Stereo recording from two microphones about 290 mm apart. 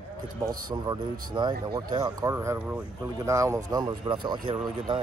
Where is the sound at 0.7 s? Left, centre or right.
Centre.